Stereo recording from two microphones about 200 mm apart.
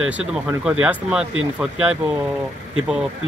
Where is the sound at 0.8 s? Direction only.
5° right (ahead or behind).